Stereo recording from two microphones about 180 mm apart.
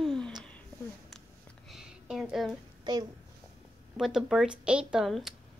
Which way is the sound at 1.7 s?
Centre (ahead or behind).